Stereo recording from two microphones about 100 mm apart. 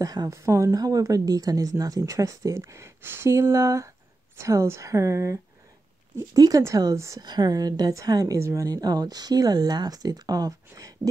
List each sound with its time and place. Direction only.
0.0 s speech: 40° right (ahead or behind)
7.2 s speech: 45° right (ahead or behind)
8.6 s speech: 45° right (ahead or behind)